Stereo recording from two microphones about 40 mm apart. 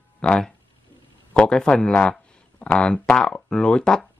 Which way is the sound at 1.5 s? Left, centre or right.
Centre.